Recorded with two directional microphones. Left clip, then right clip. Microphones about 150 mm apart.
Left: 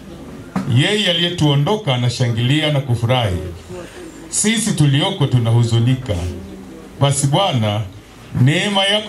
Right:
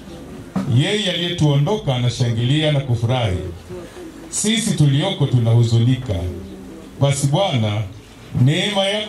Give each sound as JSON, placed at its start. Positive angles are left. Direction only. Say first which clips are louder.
{"t": 0.5, "sound": "a man's voice", "louder": "left 3 dB", "side_deg": 30}
{"t": 4.3, "sound": "a man's voice", "louder": "left 2 dB", "side_deg": 30}
{"t": 7.0, "sound": "a man's voice", "louder": "left 2 dB", "side_deg": 30}